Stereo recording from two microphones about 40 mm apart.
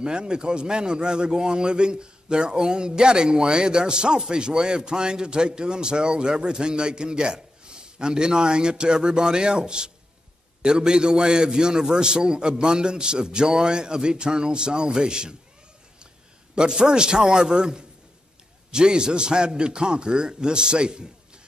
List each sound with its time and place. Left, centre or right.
0.0 s a man's voice: right
16.5 s a man's voice: centre